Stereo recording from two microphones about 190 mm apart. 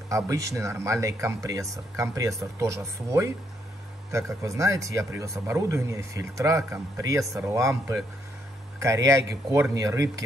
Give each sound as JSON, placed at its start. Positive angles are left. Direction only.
{"t": 0.1, "sound": "speech", "side_deg": -15}